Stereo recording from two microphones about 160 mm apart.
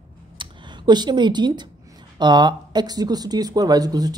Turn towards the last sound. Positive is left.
turn(degrees=-25)  # may be behind; listen again after turning